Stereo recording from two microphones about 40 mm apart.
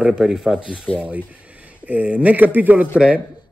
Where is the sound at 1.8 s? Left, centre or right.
Right.